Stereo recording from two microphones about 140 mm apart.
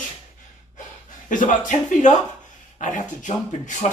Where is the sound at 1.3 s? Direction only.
65° left (ahead or behind).